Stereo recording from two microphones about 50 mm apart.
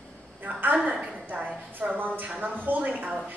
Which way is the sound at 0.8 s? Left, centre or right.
Centre.